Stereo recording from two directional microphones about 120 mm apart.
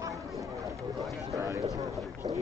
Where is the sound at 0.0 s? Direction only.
25° right (ahead or behind).